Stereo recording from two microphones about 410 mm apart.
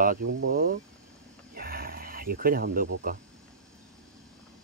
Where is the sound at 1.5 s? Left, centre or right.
Right.